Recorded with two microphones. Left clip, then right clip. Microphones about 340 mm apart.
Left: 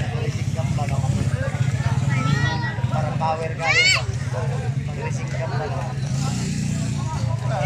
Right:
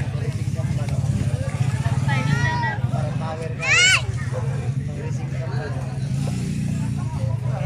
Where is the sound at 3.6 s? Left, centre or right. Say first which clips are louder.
Right 2 dB; right.